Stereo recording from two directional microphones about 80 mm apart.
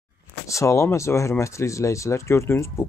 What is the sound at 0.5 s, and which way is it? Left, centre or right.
Speech, left.